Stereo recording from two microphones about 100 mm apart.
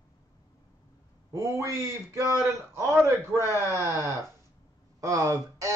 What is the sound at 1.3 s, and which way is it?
A man's voice, 30° right (ahead or behind).